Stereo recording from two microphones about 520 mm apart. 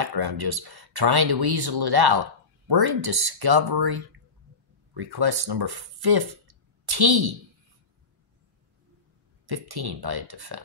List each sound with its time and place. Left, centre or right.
0.0 s speech: right
9.5 s speech: right